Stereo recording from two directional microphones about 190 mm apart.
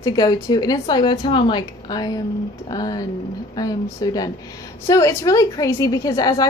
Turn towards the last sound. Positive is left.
turn(degrees=20)  # may be behind; listen again after turning